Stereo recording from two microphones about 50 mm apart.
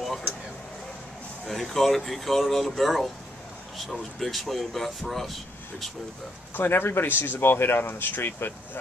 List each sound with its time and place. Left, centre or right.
1.5 s speech: centre
6.5 s speech: left